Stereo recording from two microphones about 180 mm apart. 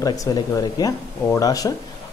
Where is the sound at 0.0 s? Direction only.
20° left (ahead or behind).